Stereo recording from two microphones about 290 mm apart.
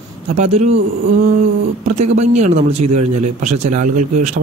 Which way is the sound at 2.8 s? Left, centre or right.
Right.